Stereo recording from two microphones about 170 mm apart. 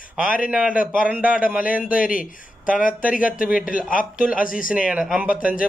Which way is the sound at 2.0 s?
55° left (ahead or behind).